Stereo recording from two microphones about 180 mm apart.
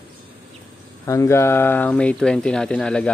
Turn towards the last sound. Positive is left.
turn(degrees=5)  # may be behind; listen again after turning